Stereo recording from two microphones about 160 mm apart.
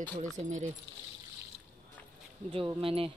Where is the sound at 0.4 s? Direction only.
50° right (ahead or behind).